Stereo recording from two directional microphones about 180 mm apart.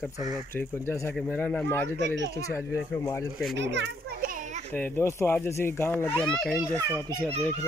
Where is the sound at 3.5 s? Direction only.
75° right (ahead or behind); by 4.6 s 50° right (ahead or behind).